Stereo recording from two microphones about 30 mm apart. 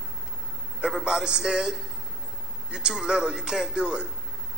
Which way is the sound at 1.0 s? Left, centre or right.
Right.